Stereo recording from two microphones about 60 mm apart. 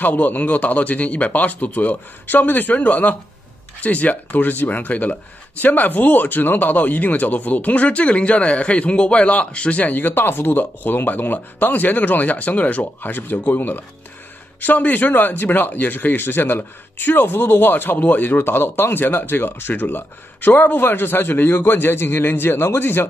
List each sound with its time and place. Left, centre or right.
0.0 s speech: left